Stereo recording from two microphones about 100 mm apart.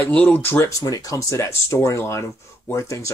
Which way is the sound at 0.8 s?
35° left (ahead or behind).